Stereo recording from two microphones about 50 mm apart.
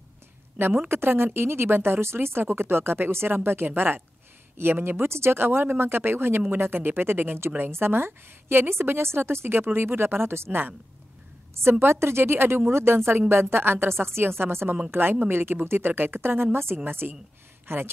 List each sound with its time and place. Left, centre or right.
0.8 s speech: right
11.8 s speech: right